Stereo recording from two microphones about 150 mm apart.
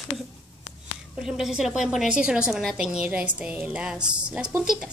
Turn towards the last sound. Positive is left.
turn(degrees=-5)  # may be behind; listen again after turning